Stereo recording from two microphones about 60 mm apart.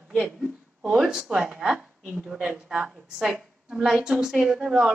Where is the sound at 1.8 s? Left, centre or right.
Right.